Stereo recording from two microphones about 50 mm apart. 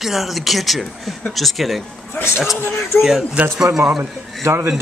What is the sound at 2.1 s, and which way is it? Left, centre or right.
Speech, left.